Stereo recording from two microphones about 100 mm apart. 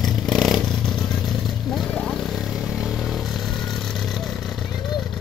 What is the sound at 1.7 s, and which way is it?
Vehicle, 5° left (ahead or behind).